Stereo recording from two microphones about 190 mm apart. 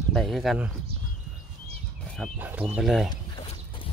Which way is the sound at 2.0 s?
Centre (ahead or behind).